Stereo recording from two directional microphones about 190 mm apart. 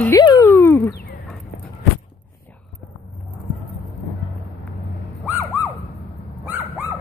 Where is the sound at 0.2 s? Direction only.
20° left (ahead or behind).